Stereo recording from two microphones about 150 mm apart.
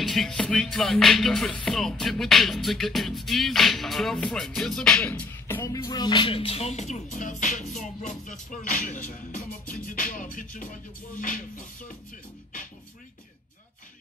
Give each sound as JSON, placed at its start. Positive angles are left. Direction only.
{"t": 0.0, "sound": "music", "side_deg": 0}
{"t": 5.9, "sound": "music", "side_deg": 30}